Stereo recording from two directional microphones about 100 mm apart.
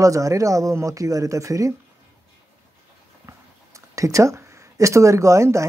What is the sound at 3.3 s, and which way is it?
Speech, 30° right (ahead or behind).